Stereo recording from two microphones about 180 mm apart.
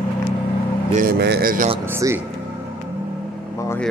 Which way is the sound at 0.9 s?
50° right (ahead or behind).